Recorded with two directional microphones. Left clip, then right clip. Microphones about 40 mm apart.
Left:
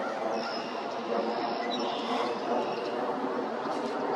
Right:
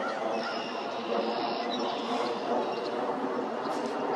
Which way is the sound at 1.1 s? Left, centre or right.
Right.